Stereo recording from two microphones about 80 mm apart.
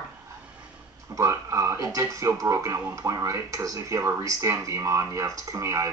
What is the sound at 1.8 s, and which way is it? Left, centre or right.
Speech, right.